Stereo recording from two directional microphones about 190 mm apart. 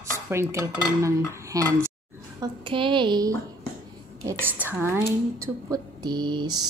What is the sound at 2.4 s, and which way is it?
Child singing, 25° right (ahead or behind).